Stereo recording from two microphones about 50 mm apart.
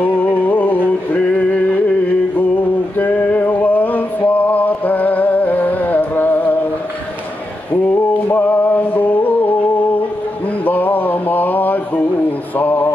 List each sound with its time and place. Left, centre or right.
0.0 s music: left
3.0 s male singing: left
7.7 s music: left
10.6 s a sound: left